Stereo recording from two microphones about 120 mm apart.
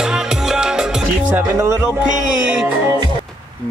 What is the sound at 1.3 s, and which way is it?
Speech, 15° right (ahead or behind).